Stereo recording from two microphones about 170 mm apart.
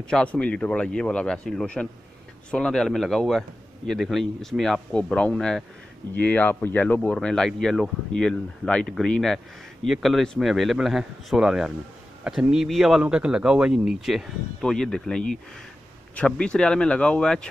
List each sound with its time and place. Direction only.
0.1 s speech: 5° left (ahead or behind)